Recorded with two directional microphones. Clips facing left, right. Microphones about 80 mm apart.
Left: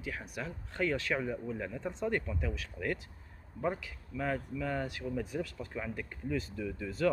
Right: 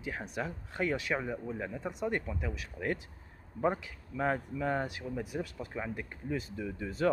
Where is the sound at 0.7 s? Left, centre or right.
Centre.